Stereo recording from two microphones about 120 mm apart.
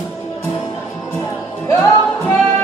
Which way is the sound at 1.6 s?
25° left (ahead or behind).